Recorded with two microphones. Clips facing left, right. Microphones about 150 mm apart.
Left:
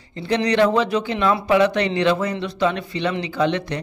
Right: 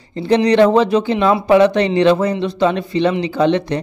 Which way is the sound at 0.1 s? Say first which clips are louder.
Right 7 dB; 30° right (ahead or behind).